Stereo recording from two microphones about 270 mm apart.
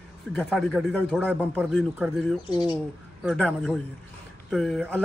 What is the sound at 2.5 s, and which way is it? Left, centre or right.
Speech, centre.